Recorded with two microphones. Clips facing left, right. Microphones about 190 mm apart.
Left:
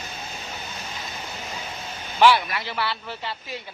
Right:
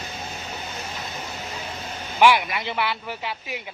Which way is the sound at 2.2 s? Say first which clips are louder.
Even; 15° right (ahead or behind).